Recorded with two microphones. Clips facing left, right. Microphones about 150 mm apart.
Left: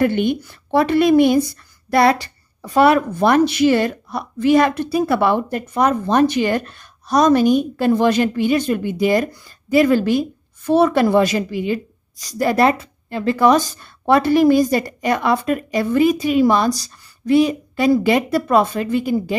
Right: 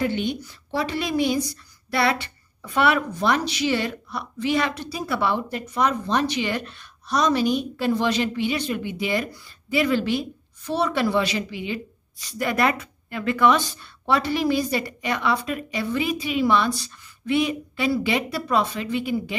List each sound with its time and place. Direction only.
0.0 s a woman's voice: 55° left (ahead or behind)